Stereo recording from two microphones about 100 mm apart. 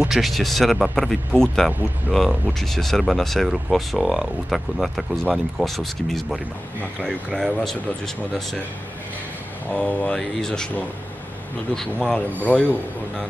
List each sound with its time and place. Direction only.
0.0 s speech: centre (ahead or behind)
2.7 s speech: 5° left (ahead or behind)
9.7 s speech: 10° left (ahead or behind)
12.5 s speech: 20° left (ahead or behind)